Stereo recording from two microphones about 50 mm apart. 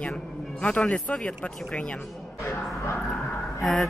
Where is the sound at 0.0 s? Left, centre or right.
Left.